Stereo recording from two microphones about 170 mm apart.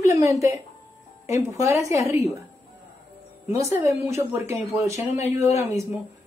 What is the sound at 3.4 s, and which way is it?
A woman's voice, 15° right (ahead or behind).